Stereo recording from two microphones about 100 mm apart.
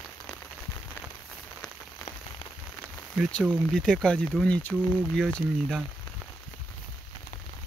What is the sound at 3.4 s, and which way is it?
Speech, 5° left (ahead or behind).